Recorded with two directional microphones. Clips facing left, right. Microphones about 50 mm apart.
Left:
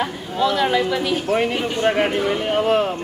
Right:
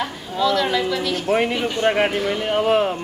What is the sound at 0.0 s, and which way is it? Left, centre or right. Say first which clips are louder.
A woman's voice: left 1 dB; centre.